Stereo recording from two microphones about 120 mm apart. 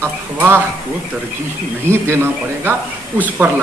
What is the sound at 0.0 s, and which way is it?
Speech, 15° right (ahead or behind).